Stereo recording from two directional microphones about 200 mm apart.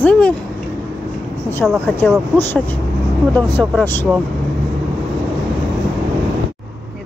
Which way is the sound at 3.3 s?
10° left (ahead or behind).